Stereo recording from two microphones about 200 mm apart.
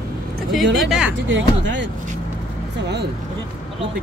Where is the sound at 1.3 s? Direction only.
65° right (ahead or behind).